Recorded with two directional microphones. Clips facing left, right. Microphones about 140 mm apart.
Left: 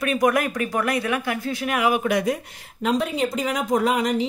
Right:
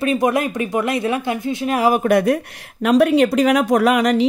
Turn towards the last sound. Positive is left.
turn(degrees=-75)  # may be behind; listen again after turning